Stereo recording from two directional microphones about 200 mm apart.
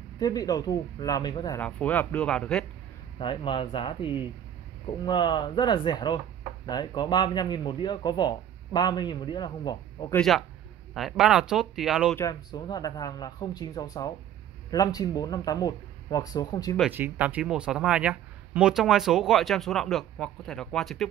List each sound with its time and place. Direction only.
0.2 s speech: 20° left (ahead or behind)
1.6 s speech: 5° left (ahead or behind)
3.2 s speech: 25° left (ahead or behind)
10.1 s speech: centre (ahead or behind)
12.2 s speech: 20° left (ahead or behind)
16.9 s speech: 10° right (ahead or behind)